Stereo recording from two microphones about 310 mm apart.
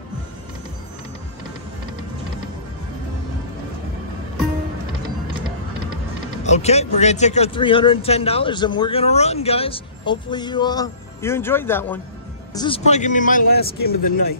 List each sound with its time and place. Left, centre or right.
6.4 s a man's voice: left